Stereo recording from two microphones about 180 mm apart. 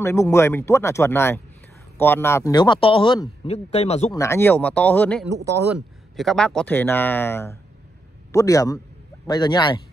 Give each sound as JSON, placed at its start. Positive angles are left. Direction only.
{"t": 0.0, "sound": "a man's voice", "side_deg": 15}
{"t": 4.1, "sound": "speech", "side_deg": 15}
{"t": 5.4, "sound": "speech", "side_deg": -15}
{"t": 5.8, "sound": "a man's voice", "side_deg": 0}